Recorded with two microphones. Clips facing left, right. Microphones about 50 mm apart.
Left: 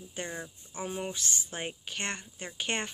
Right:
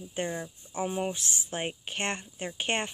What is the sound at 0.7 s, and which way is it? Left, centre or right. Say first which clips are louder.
Speech: right 5 dB; centre.